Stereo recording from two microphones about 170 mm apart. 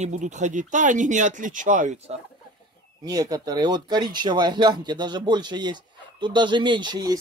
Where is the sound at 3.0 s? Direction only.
20° right (ahead or behind).